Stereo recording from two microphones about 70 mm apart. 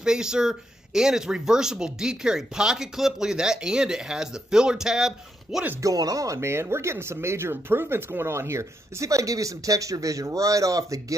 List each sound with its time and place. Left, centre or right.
0.0 s speech: centre
5.8 s speech: right